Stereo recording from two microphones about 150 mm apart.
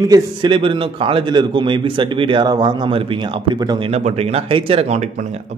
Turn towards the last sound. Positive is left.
turn(degrees=-45)  # may be behind; listen again after turning